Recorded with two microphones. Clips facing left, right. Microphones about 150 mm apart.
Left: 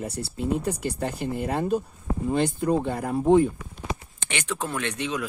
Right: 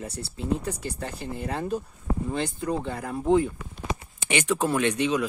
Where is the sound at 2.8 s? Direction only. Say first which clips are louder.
Left 4 dB; 15° left (ahead or behind).